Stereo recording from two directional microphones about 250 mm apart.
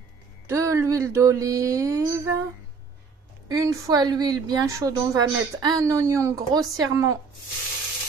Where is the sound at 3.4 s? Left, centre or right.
Centre.